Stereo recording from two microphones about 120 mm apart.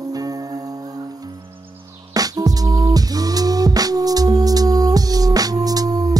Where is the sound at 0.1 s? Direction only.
30° right (ahead or behind).